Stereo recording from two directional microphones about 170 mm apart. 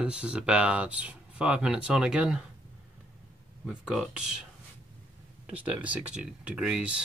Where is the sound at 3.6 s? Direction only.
5° right (ahead or behind).